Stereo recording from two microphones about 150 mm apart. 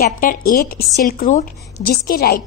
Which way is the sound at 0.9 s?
65° left (ahead or behind).